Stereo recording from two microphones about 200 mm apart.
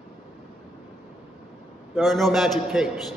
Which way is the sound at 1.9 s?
Centre (ahead or behind).